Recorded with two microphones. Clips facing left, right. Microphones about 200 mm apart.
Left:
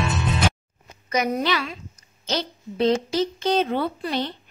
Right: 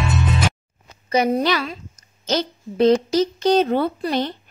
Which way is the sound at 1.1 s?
30° right (ahead or behind).